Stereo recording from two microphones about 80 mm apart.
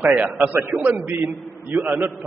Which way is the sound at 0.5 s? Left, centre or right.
Right.